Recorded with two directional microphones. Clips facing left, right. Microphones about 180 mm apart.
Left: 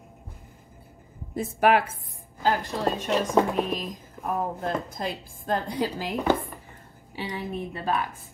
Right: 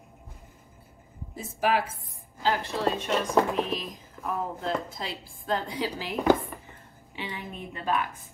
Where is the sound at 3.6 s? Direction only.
50° left (ahead or behind).